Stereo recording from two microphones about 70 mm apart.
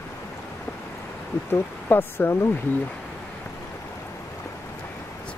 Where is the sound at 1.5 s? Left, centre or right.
Left.